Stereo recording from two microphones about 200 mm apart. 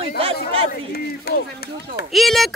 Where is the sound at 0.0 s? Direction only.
30° right (ahead or behind).